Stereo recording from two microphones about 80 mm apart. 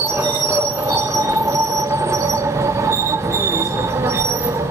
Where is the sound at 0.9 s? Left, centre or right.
Right.